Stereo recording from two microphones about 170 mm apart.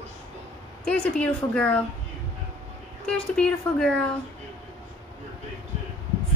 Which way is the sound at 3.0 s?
5° left (ahead or behind).